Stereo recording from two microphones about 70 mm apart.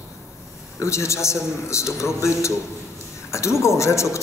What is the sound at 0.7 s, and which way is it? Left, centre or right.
A man's voice, left.